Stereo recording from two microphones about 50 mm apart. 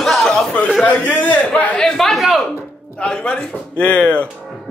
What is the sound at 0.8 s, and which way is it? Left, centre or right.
Speech, left.